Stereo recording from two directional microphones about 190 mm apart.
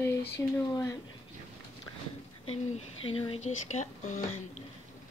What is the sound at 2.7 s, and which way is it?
Speech, 30° left (ahead or behind).